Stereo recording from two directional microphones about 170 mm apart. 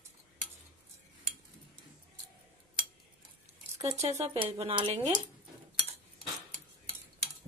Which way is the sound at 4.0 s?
40° right (ahead or behind).